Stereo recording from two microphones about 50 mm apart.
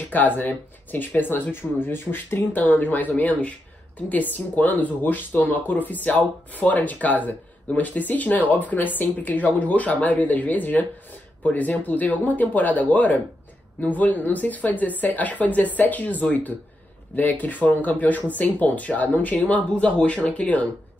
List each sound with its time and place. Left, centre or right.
0.1 s speech: left